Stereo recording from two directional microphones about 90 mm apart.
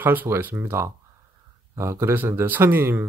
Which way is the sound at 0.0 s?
20° right (ahead or behind).